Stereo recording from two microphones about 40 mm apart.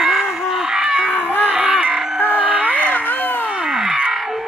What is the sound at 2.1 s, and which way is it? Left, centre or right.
Music, right.